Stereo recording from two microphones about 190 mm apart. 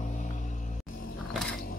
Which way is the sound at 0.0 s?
40° left (ahead or behind).